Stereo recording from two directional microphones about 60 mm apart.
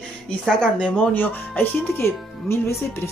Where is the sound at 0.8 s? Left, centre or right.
Left.